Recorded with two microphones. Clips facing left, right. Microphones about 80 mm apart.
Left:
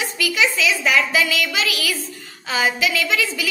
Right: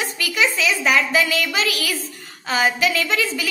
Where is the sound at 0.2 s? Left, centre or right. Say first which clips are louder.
Left 1 dB; right.